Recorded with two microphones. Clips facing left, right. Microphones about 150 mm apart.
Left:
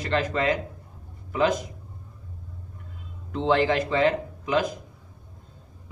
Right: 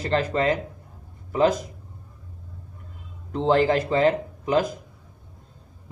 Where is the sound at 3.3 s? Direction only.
35° right (ahead or behind).